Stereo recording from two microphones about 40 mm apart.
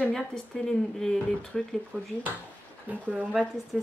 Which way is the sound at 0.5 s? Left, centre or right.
Centre.